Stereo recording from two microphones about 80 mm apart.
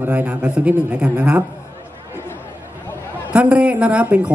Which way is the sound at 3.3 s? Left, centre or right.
Centre.